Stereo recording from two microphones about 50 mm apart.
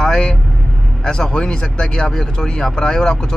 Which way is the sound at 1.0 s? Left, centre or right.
Centre.